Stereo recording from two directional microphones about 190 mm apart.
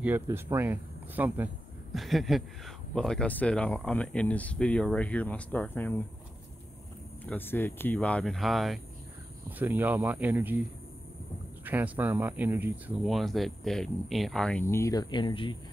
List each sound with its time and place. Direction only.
0.0 s speech: 10° right (ahead or behind); by 6.0 s 10° left (ahead or behind)
7.2 s speech: 10° left (ahead or behind); by 10.6 s 10° right (ahead or behind)
11.6 s speech: 10° right (ahead or behind); by 15.5 s 25° left (ahead or behind)